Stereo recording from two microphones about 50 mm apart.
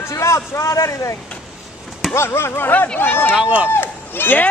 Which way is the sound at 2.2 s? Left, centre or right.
Left.